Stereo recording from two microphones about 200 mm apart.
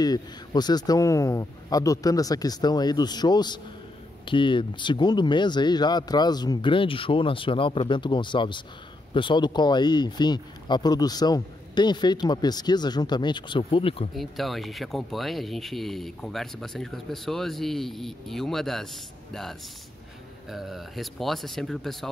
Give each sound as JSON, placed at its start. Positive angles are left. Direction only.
{"t": 0.0, "sound": "speech", "side_deg": 20}
{"t": 14.1, "sound": "speech", "side_deg": 0}
{"t": 20.4, "sound": "speech", "side_deg": 0}